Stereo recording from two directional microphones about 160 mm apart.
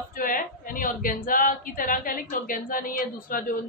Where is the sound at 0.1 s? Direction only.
60° left (ahead or behind).